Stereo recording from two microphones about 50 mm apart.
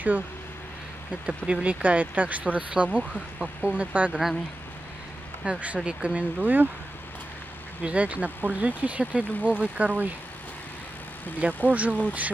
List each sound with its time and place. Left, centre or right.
1.2 s speech: centre
4.1 s speech: centre
5.4 s speech: right
6.4 s speech: right
7.8 s speech: right
11.4 s speech: right